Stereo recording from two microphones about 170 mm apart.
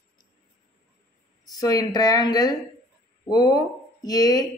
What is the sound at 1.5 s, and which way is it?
A man's voice, 20° left (ahead or behind).